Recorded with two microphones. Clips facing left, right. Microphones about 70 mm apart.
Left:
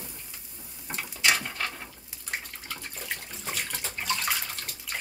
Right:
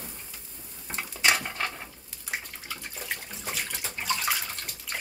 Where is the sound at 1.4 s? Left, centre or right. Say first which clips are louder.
Right 1 dB; centre.